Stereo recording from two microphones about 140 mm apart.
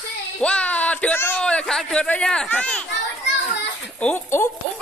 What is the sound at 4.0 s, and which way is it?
Speech, 15° left (ahead or behind).